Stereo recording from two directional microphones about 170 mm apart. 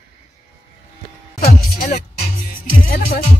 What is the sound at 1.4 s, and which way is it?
Music, 60° left (ahead or behind).